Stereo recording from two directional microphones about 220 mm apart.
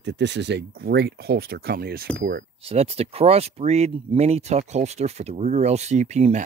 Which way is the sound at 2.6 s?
25° right (ahead or behind).